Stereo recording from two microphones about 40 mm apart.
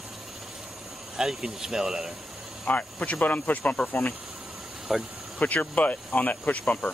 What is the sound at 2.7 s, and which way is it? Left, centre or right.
Speech, left.